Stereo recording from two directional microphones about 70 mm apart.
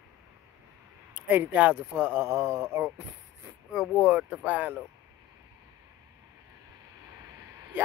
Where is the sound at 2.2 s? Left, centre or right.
Right.